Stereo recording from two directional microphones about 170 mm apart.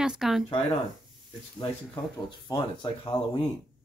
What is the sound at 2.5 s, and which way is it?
Speech, 30° left (ahead or behind).